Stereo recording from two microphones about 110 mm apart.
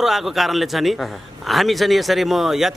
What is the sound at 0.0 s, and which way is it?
A man's voice, centre (ahead or behind).